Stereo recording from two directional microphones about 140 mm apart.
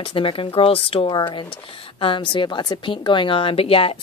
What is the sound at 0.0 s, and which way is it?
Speech, 40° left (ahead or behind).